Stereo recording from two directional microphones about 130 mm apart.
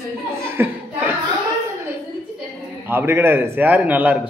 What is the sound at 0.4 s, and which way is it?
Chuckle, 15° right (ahead or behind).